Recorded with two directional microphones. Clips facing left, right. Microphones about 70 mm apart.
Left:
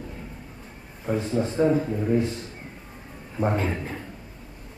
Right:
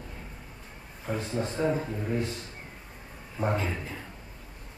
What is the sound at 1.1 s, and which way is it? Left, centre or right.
Speech, centre.